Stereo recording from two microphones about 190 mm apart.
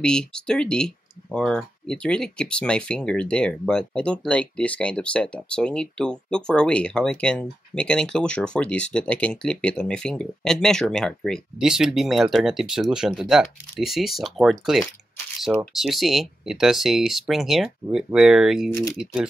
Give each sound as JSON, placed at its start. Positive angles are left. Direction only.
{"t": 0.0, "sound": "speech", "side_deg": 5}